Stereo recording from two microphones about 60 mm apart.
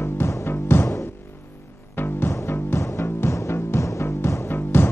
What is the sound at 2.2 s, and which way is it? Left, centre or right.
Music, left.